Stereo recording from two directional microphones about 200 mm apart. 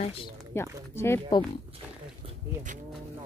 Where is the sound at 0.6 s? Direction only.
10° left (ahead or behind).